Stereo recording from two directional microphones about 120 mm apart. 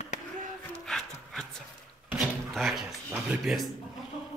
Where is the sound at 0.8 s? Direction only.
5° left (ahead or behind).